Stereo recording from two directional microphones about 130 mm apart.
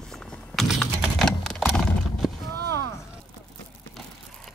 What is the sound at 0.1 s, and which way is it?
Typing, 5° left (ahead or behind).